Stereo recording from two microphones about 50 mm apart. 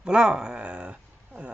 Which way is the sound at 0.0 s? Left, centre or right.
Centre.